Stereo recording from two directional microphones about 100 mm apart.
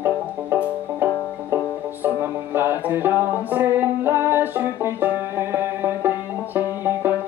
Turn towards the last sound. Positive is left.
turn(degrees=-20)  # may be behind; listen again after turning